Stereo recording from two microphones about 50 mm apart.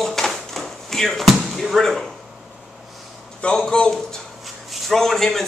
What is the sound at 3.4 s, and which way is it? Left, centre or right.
Speech, centre.